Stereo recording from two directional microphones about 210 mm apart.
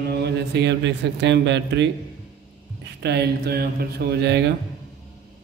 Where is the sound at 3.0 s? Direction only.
50° right (ahead or behind).